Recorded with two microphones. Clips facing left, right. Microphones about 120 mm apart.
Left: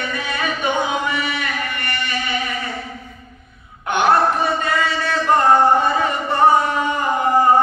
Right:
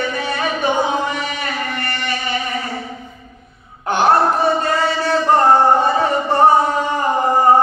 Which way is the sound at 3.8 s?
35° right (ahead or behind).